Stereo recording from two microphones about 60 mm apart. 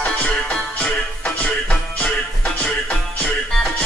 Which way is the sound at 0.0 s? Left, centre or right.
Centre.